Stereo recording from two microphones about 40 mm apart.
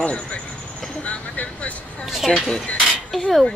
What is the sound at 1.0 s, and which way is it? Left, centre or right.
Vehicle, left.